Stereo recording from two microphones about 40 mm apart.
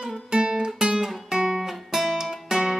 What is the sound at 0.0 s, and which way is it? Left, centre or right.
Guitar, centre.